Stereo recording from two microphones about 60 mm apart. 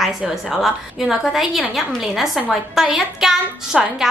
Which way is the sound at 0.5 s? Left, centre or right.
Centre.